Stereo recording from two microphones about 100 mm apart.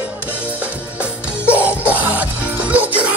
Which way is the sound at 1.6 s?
15° right (ahead or behind).